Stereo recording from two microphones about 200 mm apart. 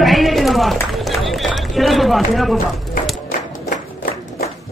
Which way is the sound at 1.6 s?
Centre (ahead or behind).